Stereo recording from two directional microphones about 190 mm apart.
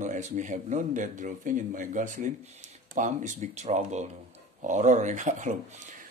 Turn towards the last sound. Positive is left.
turn(degrees=-40)  # may be behind; listen again after turning